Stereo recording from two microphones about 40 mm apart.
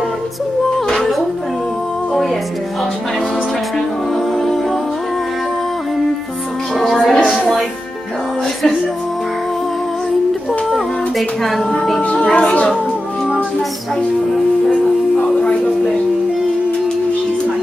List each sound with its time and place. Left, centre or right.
0.8 s music: centre
6.8 s music: centre
10.7 s a sound: centre
12.2 s music: left
14.7 s music: centre